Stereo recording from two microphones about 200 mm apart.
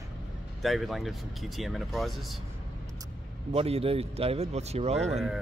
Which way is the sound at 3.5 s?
30° right (ahead or behind).